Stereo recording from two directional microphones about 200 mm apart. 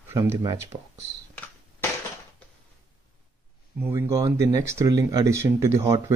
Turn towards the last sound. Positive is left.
turn(degrees=-15)  # may be behind; listen again after turning